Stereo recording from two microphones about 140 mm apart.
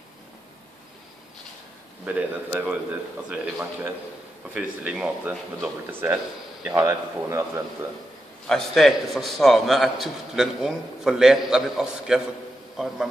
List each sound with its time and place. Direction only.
2.0 s a man's voice: 10° right (ahead or behind)
8.5 s a man's voice: 5° left (ahead or behind)